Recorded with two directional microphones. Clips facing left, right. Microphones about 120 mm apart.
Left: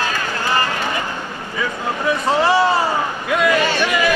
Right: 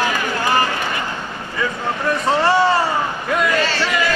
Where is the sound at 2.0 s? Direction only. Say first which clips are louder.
Even; centre (ahead or behind).